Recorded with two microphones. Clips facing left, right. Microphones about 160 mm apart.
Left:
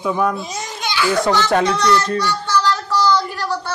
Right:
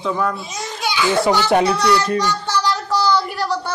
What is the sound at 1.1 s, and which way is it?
A child's voice, 15° right (ahead or behind).